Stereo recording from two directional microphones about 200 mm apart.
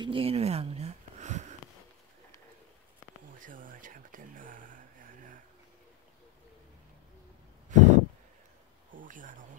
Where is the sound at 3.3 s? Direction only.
40° right (ahead or behind).